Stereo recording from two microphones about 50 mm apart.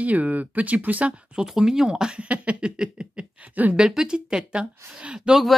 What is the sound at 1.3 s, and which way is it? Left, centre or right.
Speech, centre.